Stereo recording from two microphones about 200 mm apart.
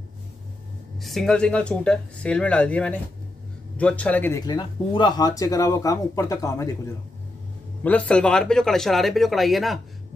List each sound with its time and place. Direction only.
0.9 s speech: centre (ahead or behind); by 6.7 s 15° left (ahead or behind)
7.8 s speech: 5° left (ahead or behind)